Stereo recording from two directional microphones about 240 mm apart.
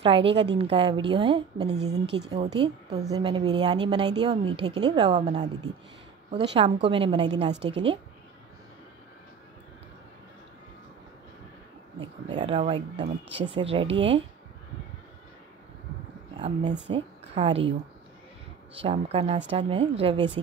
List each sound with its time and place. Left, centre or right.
0.0 s a woman's voice: right
6.5 s a woman's voice: right
12.4 s a woman's voice: right
16.3 s a woman's voice: right
18.8 s a woman's voice: right